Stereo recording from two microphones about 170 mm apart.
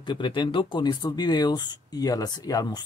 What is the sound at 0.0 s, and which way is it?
Speech, 25° left (ahead or behind).